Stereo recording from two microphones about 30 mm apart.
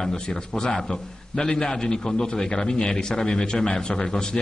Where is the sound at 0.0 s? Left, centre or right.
Centre.